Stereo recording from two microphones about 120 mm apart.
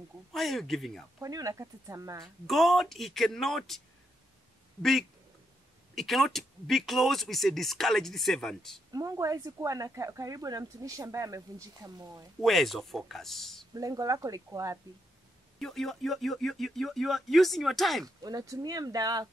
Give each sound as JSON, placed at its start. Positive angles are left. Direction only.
{"t": 0.3, "sound": "speech", "side_deg": 0}
{"t": 1.2, "sound": "speech", "side_deg": -30}
{"t": 2.4, "sound": "speech", "side_deg": 0}
{"t": 5.9, "sound": "speech", "side_deg": 0}
{"t": 8.9, "sound": "speech", "side_deg": -30}
{"t": 12.4, "sound": "speech", "side_deg": 0}
{"t": 13.7, "sound": "speech", "side_deg": -30}
{"t": 15.6, "sound": "speech", "side_deg": 5}
{"t": 18.0, "sound": "speech", "side_deg": -30}